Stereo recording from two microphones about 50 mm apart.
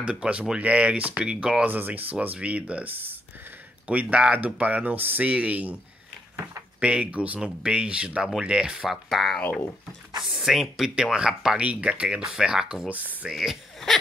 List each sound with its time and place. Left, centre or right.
0.0 s speech: right
1.2 s speech: centre
1.7 s speech: right
2.9 s speech: right
6.8 s speech: right
8.8 s speech: centre
11.6 s speech: right
12.9 s speech: right
13.3 s speech: centre